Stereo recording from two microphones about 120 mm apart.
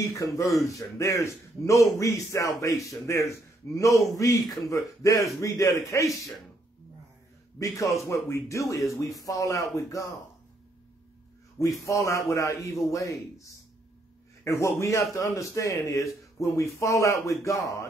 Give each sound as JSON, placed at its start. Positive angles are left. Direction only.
{"t": 0.1, "sound": "a man's voice", "side_deg": 25}
{"t": 7.5, "sound": "a man's voice", "side_deg": 25}
{"t": 11.5, "sound": "a man's voice", "side_deg": 25}
{"t": 14.4, "sound": "a man's voice", "side_deg": 25}